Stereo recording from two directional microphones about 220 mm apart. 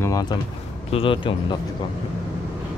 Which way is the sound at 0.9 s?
25° left (ahead or behind).